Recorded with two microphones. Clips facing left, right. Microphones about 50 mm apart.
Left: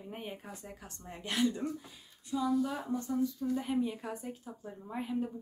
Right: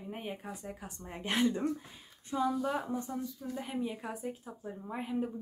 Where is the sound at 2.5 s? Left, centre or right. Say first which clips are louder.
Left 1 dB; centre.